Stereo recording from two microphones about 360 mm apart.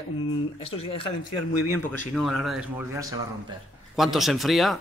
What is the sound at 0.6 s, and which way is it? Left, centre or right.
Speech, centre.